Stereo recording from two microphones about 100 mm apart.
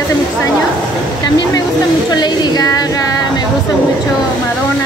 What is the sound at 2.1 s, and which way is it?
Speech, 45° left (ahead or behind).